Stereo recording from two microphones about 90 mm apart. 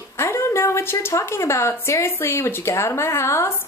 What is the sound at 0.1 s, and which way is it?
Speech, 30° left (ahead or behind).